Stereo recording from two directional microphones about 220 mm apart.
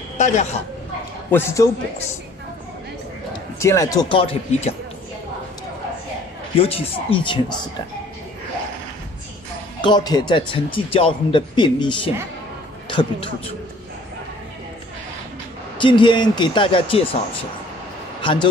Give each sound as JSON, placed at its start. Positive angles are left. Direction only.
{"t": 0.2, "sound": "speech", "side_deg": 30}
{"t": 1.3, "sound": "speech", "side_deg": 10}
{"t": 3.5, "sound": "speech", "side_deg": 15}
{"t": 6.6, "sound": "a man's voice", "side_deg": 25}
{"t": 9.8, "sound": "a man's voice", "side_deg": 20}
{"t": 15.8, "sound": "a man's voice", "side_deg": 20}
{"t": 18.2, "sound": "a man's voice", "side_deg": 20}